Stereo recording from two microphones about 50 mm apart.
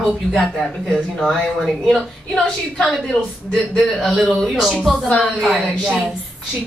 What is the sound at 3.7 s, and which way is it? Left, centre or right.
Speech, centre.